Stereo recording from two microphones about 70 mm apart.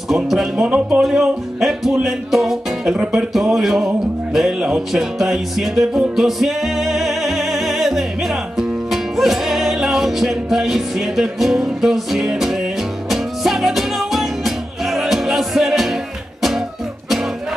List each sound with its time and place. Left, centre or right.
0.1 s music: centre
0.7 s speech: centre
1.0 s speech: centre
2.0 s music: centre